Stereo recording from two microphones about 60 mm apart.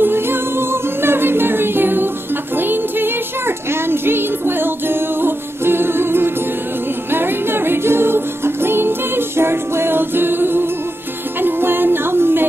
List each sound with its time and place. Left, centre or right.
0.0 s music: right